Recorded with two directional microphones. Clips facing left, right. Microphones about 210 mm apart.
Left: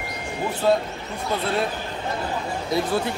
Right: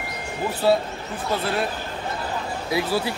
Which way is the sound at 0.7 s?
5° right (ahead or behind).